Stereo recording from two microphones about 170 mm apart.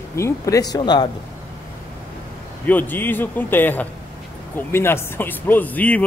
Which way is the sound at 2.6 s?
10° left (ahead or behind).